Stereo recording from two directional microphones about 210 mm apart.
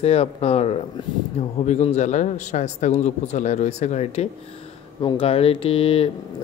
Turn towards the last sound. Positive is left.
turn(degrees=25)  # may be behind; listen again after turning